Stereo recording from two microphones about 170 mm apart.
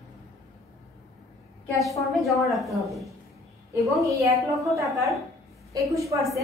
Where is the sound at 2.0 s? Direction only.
Centre (ahead or behind).